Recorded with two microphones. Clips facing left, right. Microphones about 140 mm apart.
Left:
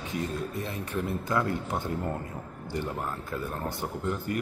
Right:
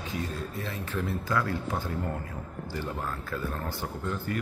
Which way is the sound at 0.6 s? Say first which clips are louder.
Left 1 dB; 20° left (ahead or behind).